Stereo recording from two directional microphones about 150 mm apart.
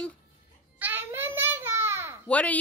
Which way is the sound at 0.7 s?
10° right (ahead or behind).